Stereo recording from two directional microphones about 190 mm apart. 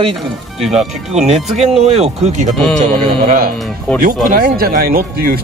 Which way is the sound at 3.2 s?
50° right (ahead or behind).